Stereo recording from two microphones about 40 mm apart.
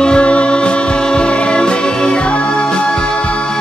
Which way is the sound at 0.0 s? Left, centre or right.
Left.